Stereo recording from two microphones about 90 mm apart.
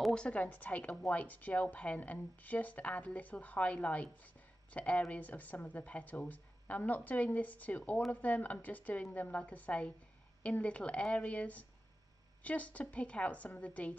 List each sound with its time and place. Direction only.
0.1 s a woman's voice: 10° left (ahead or behind)